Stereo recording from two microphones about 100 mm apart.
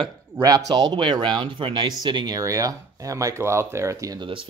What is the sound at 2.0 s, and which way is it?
Speech, 45° right (ahead or behind).